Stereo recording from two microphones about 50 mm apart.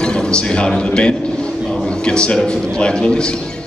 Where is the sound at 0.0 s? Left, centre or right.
Centre.